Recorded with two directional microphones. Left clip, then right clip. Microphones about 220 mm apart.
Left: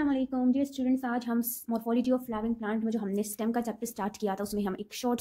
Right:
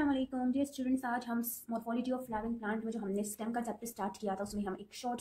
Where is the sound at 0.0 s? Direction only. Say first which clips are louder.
Left 5 dB; 35° left (ahead or behind).